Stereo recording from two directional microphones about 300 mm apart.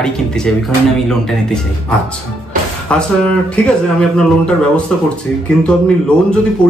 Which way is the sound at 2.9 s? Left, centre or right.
Centre.